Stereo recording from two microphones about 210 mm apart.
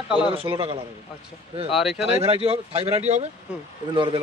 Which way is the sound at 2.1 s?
25° right (ahead or behind).